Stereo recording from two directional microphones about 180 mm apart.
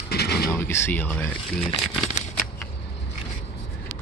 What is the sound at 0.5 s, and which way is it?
Speech, 15° left (ahead or behind).